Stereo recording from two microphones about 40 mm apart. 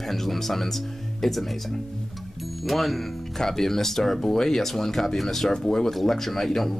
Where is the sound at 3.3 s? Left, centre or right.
Centre.